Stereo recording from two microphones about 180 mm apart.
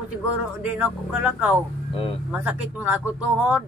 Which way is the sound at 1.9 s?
30° left (ahead or behind).